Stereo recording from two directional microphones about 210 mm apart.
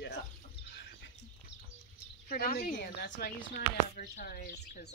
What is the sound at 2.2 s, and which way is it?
Speech, 45° left (ahead or behind).